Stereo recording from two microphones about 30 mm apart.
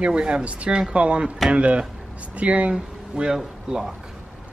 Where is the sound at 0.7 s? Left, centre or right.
Right.